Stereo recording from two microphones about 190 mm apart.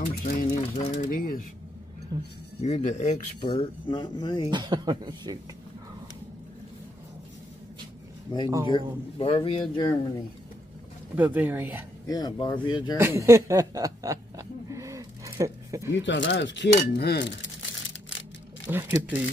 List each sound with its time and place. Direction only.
0.0 s a sound: 45° left (ahead or behind)
0.6 s a sound: 35° left (ahead or behind)
1.1 s speech: 50° left (ahead or behind)
2.1 s speech: 20° right (ahead or behind)
2.6 s speech: 40° left (ahead or behind)
3.4 s a man's voice: 25° left (ahead or behind)
4.5 s speech: 20° right (ahead or behind)
8.3 s a man's voice: 25° left (ahead or behind)
11.1 s speech: 10° right (ahead or behind)
12.1 s a man's voice: 20° left (ahead or behind)
12.9 s chuckle: 15° right (ahead or behind)
15.9 s speech: 75° left (ahead or behind)
16.9 s cutlery: 60° left (ahead or behind)
18.7 s speech: 10° right (ahead or behind)